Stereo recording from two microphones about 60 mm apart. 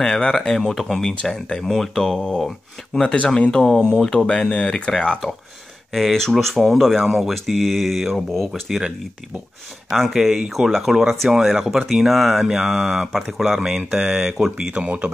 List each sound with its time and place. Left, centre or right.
0.0 s speech: centre
5.9 s speech: centre
10.0 s speech: centre
14.8 s speech: centre